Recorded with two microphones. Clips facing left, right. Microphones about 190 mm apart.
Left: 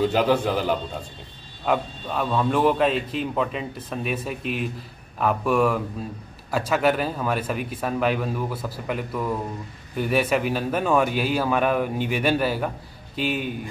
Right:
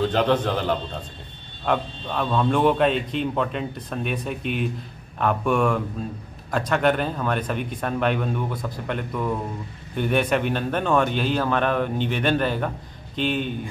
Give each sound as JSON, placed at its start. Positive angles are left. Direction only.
{"t": 0.0, "sound": "a man's voice", "side_deg": 10}